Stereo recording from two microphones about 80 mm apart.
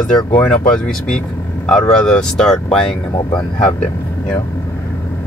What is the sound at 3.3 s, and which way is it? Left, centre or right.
Speech, left.